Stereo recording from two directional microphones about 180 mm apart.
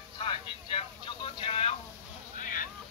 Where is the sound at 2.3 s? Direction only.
50° left (ahead or behind).